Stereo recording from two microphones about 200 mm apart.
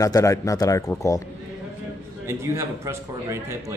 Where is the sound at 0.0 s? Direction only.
15° left (ahead or behind).